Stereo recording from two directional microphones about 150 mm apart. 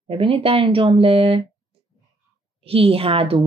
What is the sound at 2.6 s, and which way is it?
Speech, 40° right (ahead or behind).